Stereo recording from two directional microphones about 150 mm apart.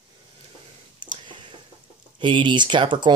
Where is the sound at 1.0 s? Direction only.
30° right (ahead or behind).